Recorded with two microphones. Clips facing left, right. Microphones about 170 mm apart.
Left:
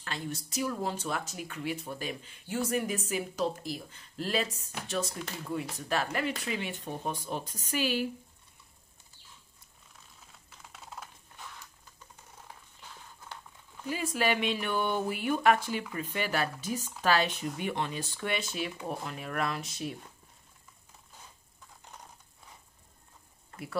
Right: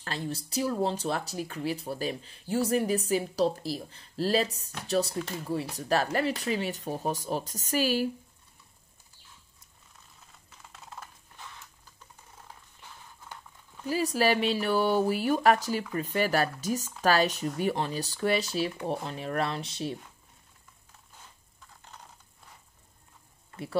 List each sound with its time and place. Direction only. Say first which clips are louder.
0.0 s speech: right 3 dB; 35° right (ahead or behind)
10.3 s typing: even; centre (ahead or behind)
13.8 s speech: right 4 dB; 35° right (ahead or behind)